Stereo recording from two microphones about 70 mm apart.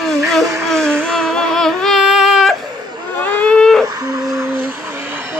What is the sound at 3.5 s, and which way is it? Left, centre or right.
Baby cry, centre.